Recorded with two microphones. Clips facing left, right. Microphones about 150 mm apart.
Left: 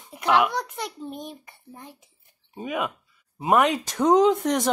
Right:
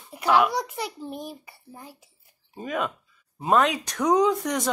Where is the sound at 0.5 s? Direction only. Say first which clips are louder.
Right 1 dB; 5° right (ahead or behind).